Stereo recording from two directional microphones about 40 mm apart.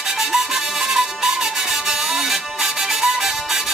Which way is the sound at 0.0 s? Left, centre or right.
Centre.